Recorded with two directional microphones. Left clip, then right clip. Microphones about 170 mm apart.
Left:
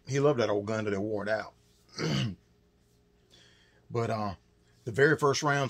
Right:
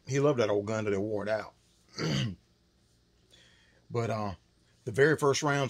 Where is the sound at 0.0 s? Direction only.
25° right (ahead or behind).